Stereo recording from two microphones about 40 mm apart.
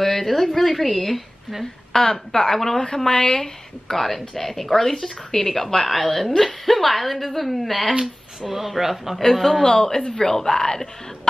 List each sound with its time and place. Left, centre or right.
0.0 s a woman's voice: centre
3.9 s speech: centre
9.2 s speech: centre